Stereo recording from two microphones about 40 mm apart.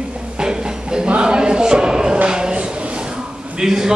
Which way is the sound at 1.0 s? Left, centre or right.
Right.